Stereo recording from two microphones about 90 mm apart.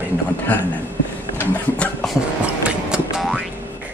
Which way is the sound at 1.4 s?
15° left (ahead or behind).